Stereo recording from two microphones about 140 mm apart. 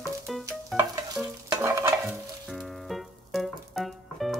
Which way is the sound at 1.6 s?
20° right (ahead or behind).